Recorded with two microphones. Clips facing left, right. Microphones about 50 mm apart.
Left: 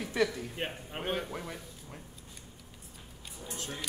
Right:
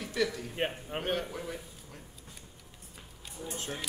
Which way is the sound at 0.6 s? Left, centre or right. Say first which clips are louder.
Right 6 dB; centre.